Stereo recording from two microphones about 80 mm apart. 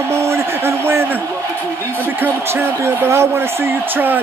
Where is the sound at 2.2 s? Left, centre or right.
Right.